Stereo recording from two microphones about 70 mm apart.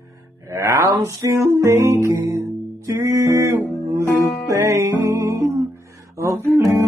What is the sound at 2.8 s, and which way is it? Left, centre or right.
Music, right.